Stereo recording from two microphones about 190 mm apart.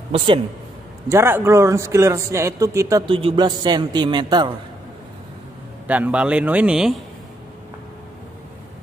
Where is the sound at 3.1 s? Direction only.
30° right (ahead or behind).